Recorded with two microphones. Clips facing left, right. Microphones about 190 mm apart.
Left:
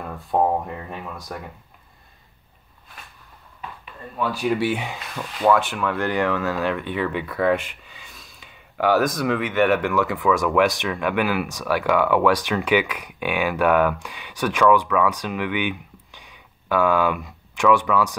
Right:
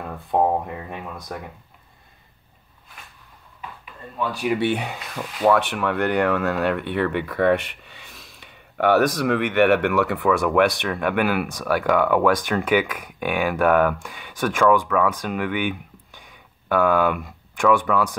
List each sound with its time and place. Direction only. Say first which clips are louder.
0.3 s speech: even; 20° right (ahead or behind)
4.3 s speech: left 1 dB; centre (ahead or behind)
5.2 s speech: right 1 dB; 40° right (ahead or behind)
5.5 s speech: even; 65° right (ahead or behind)